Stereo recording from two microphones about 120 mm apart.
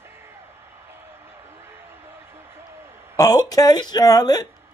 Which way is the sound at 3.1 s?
30° left (ahead or behind).